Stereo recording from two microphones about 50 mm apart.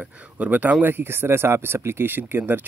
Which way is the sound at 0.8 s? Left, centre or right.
Right.